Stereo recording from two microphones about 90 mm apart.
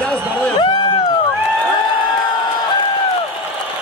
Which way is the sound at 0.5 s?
60° left (ahead or behind).